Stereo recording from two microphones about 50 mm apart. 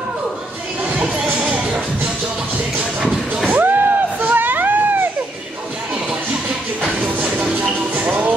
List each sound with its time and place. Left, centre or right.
1.1 s music: right
3.5 s music: right
7.9 s music: right